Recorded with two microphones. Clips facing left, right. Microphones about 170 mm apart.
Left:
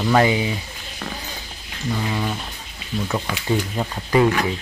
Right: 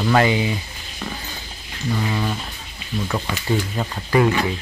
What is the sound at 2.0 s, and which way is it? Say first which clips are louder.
Speech: right 1 dB; 5° left (ahead or behind).